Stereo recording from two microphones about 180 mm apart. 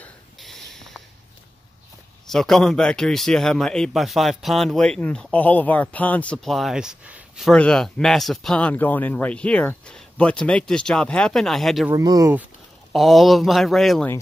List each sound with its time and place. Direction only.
0.0 s a sound: centre (ahead or behind)
2.2 s a man's voice: centre (ahead or behind)
11.9 s speech: 20° right (ahead or behind)
12.9 s a man's voice: centre (ahead or behind)